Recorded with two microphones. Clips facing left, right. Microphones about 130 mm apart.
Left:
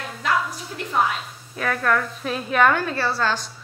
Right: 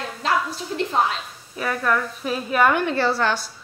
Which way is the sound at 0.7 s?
25° right (ahead or behind).